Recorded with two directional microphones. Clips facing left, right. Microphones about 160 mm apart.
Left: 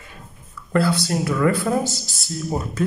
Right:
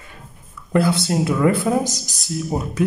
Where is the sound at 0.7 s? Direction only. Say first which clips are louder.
Right 2 dB; 20° right (ahead or behind).